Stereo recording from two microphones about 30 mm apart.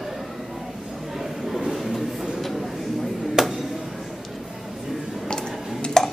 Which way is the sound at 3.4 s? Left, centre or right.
Centre.